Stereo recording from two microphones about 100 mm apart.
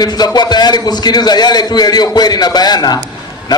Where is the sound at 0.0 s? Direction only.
40° left (ahead or behind).